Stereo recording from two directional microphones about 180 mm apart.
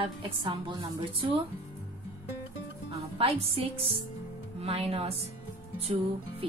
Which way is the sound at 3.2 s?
30° right (ahead or behind).